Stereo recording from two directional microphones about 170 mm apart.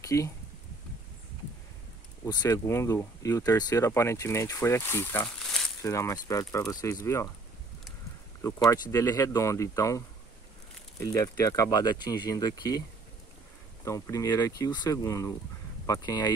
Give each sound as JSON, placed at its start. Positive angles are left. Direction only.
{"t": 0.0, "sound": "speech", "side_deg": 15}
{"t": 2.2, "sound": "speech", "side_deg": 20}
{"t": 5.4, "sound": "a sound", "side_deg": 5}
{"t": 5.8, "sound": "speech", "side_deg": 20}
{"t": 8.4, "sound": "speech", "side_deg": 15}
{"t": 13.8, "sound": "speech", "side_deg": 20}